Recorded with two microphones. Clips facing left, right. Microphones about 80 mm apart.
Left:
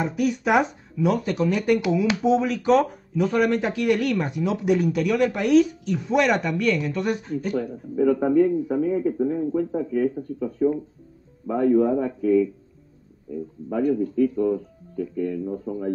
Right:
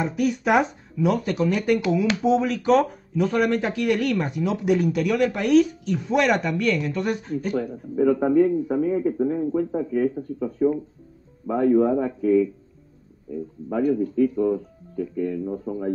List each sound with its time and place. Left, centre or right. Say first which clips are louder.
0.0 s speech: even; centre
7.5 s speech: right 1 dB; right
14.1 s speech: even; centre